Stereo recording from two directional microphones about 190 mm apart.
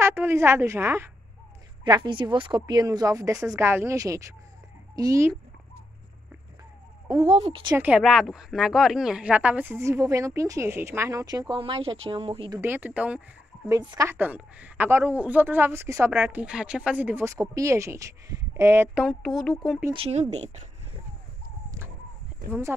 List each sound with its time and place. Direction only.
0.0 s speech: 10° right (ahead or behind)
1.9 s speech: 25° right (ahead or behind)
7.1 s speech: 30° right (ahead or behind)
7.7 s speech: 10° right (ahead or behind); by 12.5 s 25° right (ahead or behind)
12.5 s speech: 10° right (ahead or behind)
13.7 s speech: 20° right (ahead or behind)
19.0 s speech: centre (ahead or behind)
19.8 s speech: 25° right (ahead or behind)
22.5 s speech: 15° right (ahead or behind)